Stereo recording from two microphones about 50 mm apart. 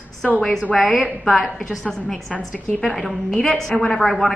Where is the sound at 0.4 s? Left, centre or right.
Centre.